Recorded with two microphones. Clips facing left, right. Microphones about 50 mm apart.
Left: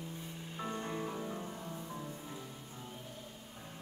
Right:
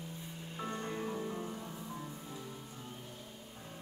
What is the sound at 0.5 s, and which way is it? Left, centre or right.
Music, centre.